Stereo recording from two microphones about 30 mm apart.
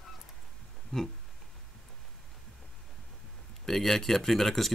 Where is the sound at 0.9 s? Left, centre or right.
Left.